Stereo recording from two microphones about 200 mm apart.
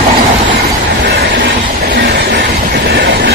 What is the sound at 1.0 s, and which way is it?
Train, 55° right (ahead or behind).